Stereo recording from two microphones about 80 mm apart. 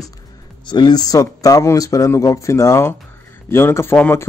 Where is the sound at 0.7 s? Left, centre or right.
Left.